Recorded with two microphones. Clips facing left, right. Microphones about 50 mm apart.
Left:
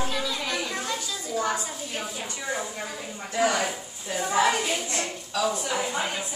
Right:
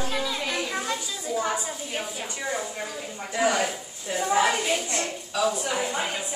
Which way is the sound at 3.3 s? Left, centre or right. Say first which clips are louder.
Right 1 dB; centre.